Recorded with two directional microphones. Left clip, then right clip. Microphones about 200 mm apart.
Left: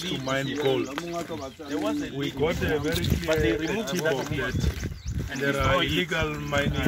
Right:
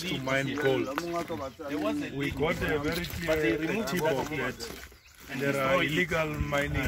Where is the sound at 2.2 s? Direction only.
10° right (ahead or behind).